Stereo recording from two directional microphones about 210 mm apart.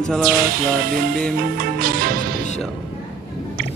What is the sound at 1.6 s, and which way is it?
Music, 45° right (ahead or behind).